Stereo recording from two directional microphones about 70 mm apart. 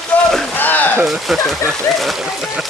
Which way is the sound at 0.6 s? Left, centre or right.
Left.